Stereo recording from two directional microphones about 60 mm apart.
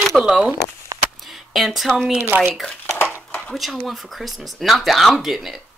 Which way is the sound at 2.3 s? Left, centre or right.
Right.